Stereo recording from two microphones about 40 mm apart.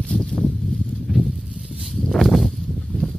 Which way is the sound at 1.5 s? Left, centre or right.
Centre.